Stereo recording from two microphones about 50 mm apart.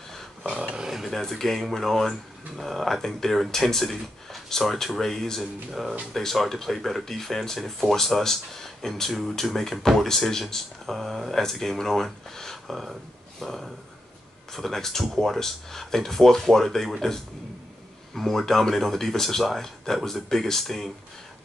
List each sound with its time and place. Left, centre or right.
0.5 s a sound: centre
1.1 s speech: centre
5.4 s speech: centre
18.1 s speech: centre